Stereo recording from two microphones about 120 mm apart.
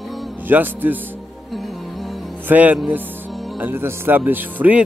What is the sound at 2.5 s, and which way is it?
Speech, 15° right (ahead or behind).